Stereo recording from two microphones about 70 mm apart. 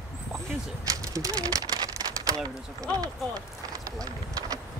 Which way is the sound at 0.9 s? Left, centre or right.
Right.